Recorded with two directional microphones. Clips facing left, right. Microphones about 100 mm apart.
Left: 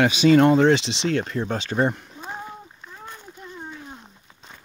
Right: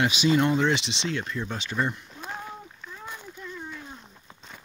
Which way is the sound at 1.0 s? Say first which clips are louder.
Left 8 dB; 45° left (ahead or behind).